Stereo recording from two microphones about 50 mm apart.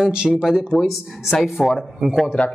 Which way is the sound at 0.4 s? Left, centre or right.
Centre.